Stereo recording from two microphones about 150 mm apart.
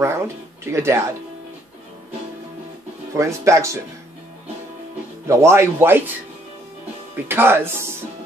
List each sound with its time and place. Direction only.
0.0 s speech: 20° right (ahead or behind)
3.2 s speech: 20° right (ahead or behind)
5.3 s speech: 20° right (ahead or behind)
7.2 s speech: 15° right (ahead or behind)